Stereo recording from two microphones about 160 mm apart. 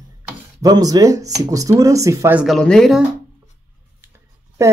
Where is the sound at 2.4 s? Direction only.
Centre (ahead or behind).